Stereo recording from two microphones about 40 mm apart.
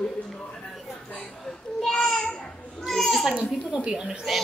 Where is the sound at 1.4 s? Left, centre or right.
Centre.